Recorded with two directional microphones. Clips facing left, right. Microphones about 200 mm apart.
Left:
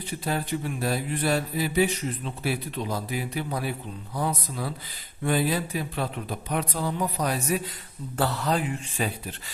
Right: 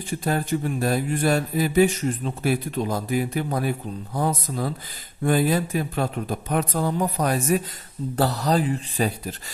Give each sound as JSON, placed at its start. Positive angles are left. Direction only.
{"t": 0.2, "sound": "speech", "side_deg": -45}